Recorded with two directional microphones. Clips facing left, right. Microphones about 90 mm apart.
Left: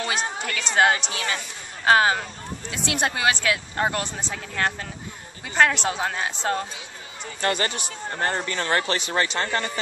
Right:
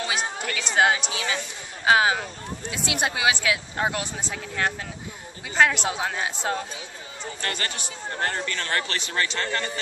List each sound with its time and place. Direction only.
0.1 s chatter: 5° right (ahead or behind)
0.6 s speech: 5° right (ahead or behind)
7.4 s speech: 20° left (ahead or behind)